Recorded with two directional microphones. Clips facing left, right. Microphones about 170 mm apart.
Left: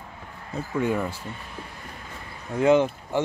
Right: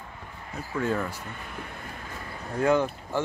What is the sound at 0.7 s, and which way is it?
Speech, 15° left (ahead or behind).